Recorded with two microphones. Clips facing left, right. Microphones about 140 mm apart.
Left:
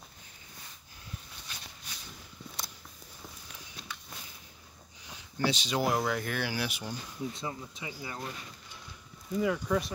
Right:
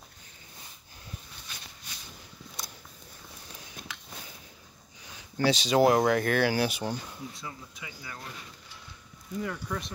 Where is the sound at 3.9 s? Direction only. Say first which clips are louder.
Left 3 dB; 90° right.